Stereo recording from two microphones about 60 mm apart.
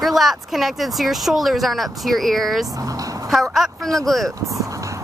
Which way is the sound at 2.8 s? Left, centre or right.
Right.